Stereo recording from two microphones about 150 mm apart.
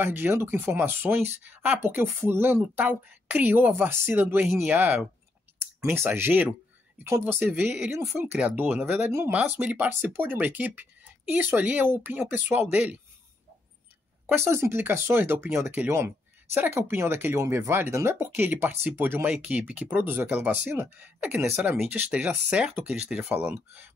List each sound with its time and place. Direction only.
0.0 s speech: 15° right (ahead or behind)
14.3 s speech: 15° right (ahead or behind)